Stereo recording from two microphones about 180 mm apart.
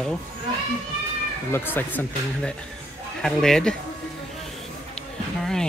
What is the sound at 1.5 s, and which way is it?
Speech, 10° left (ahead or behind).